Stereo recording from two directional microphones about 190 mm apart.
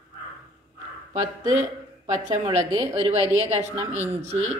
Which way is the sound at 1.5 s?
40° right (ahead or behind).